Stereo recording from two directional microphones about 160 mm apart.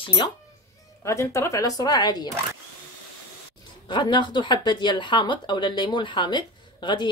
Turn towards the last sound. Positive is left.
turn(degrees=30)  # may be behind; listen again after turning